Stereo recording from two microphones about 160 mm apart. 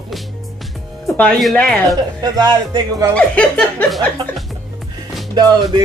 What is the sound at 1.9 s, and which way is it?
Speech, 25° right (ahead or behind).